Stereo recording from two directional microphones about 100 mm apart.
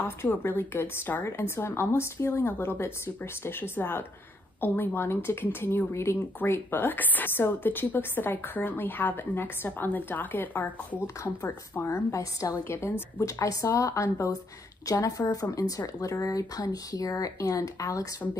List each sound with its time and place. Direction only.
0.0 s a woman's voice: 25° left (ahead or behind)